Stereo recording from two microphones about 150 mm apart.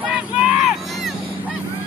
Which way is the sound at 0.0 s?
5° right (ahead or behind).